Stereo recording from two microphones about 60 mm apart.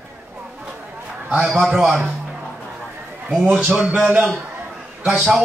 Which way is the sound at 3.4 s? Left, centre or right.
Right.